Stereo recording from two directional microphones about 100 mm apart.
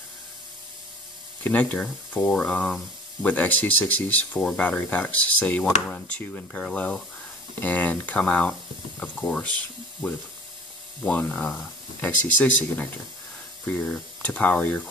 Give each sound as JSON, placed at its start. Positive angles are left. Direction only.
{"t": 1.4, "sound": "speech", "side_deg": 15}
{"t": 11.1, "sound": "speech", "side_deg": 15}